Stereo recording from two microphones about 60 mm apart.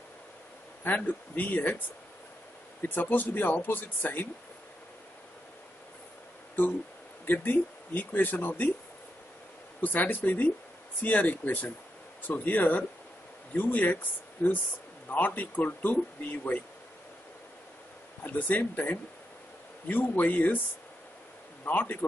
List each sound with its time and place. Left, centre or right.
0.8 s speech: left
2.8 s speech: left
6.6 s speech: left
9.8 s speech: left
18.2 s speech: left
21.6 s speech: left